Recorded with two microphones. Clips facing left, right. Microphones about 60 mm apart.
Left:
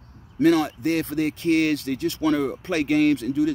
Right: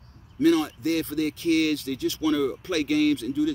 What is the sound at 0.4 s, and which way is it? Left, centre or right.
Speech, left.